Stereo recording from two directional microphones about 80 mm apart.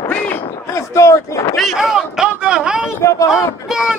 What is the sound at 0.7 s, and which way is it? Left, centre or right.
Speech, left.